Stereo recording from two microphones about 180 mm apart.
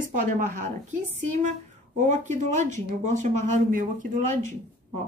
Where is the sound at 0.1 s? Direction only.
45° right (ahead or behind).